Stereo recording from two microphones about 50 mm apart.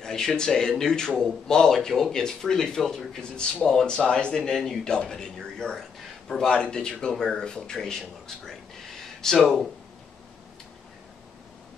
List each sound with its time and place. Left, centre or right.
0.0 s speech: centre
9.2 s speech: centre